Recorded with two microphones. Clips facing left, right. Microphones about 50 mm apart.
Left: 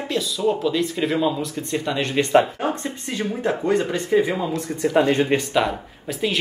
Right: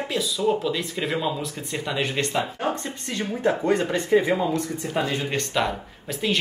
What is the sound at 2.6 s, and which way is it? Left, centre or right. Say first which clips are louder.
Speech: left 2 dB; centre.